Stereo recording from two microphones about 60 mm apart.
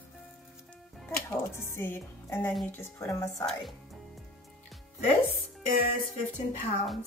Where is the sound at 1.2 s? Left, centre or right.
Left.